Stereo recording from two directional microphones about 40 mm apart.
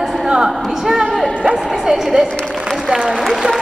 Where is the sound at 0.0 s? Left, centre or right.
Centre.